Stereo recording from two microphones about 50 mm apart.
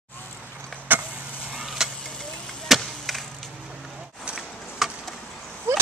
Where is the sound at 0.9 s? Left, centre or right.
Right.